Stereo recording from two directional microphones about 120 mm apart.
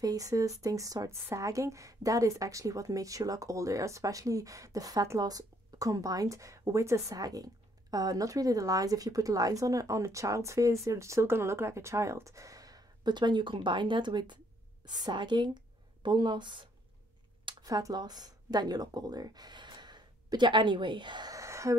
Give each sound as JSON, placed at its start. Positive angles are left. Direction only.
{"t": 0.0, "sound": "a woman's voice", "side_deg": -30}